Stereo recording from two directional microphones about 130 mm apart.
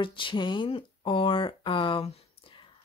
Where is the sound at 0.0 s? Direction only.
40° left (ahead or behind).